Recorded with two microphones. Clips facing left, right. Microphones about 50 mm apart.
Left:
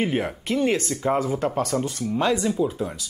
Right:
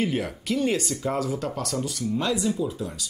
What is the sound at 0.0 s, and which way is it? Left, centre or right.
Speech, left.